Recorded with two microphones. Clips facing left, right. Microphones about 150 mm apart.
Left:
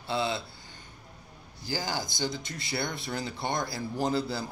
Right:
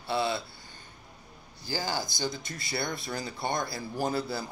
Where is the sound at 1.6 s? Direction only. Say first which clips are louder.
Even; 15° left (ahead or behind).